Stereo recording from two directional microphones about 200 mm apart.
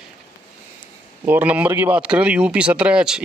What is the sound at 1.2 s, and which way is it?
Speech, 10° right (ahead or behind).